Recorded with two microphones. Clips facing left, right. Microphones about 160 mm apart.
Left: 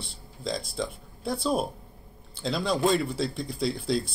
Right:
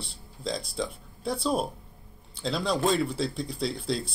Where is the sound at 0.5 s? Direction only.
5° left (ahead or behind).